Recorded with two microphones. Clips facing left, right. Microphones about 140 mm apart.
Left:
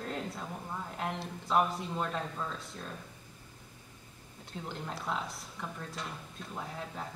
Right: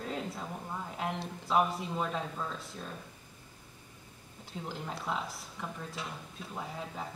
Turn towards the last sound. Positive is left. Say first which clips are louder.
# right 1 dB
turn(degrees=0)  # may be behind; listen again after turning